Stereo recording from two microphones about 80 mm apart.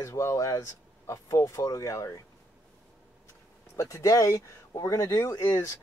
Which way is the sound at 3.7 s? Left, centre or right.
Left.